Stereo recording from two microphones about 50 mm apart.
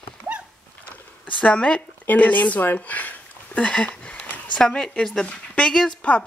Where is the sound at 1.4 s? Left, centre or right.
Left.